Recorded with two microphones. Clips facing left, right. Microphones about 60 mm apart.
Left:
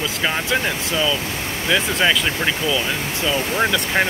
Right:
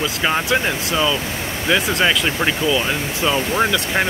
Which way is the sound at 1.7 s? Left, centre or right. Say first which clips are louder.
Right 1 dB; centre.